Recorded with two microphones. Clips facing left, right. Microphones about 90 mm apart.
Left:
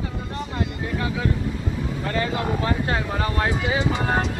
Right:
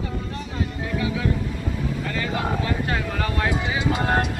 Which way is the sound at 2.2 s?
30° left (ahead or behind).